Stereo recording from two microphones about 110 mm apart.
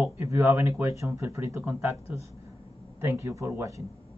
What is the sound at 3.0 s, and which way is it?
Speech, 25° right (ahead or behind).